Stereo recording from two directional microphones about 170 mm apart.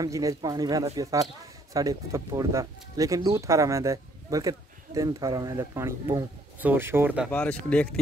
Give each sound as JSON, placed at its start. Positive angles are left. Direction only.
{"t": 0.0, "sound": "speech", "side_deg": -20}
{"t": 7.2, "sound": "speech", "side_deg": 10}